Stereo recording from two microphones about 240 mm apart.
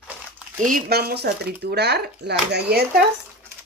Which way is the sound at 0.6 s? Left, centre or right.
Right.